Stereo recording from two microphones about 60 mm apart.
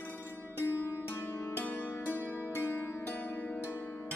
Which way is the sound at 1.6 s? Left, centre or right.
Left.